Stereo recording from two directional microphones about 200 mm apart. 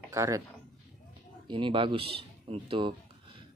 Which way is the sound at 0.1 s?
15° right (ahead or behind).